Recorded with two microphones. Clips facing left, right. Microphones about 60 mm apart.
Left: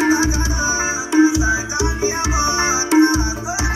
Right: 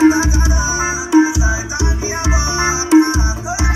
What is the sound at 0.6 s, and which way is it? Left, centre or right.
Music, left.